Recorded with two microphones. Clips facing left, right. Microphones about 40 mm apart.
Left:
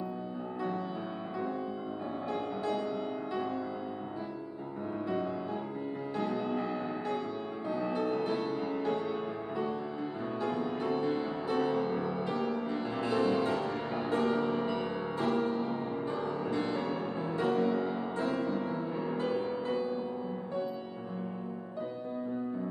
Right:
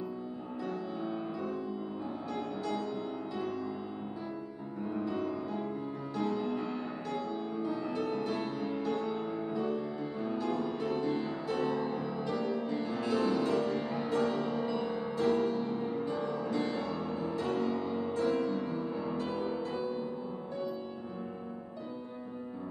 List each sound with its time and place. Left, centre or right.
2.3 s music: left
5.0 s music: left
10.2 s music: centre
11.5 s music: left
13.9 s music: left
16.5 s music: centre
16.8 s music: left
19.3 s music: centre